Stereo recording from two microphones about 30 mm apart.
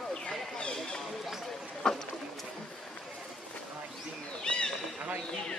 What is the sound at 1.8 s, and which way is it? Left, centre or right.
Boat, centre.